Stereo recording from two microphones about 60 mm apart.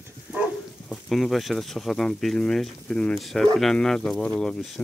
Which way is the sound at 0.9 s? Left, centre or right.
Centre.